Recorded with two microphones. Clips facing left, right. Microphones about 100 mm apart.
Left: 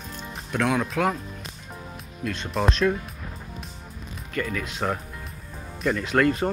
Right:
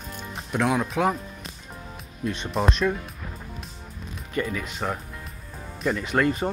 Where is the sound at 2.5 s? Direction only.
5° right (ahead or behind).